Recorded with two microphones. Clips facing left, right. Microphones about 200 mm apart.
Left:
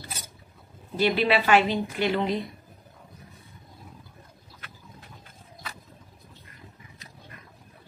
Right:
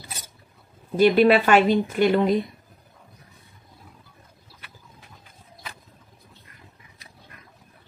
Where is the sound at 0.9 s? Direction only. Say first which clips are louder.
Right 7 dB; 50° right (ahead or behind).